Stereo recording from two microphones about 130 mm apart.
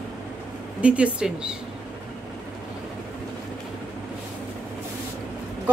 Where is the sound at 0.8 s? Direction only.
10° right (ahead or behind).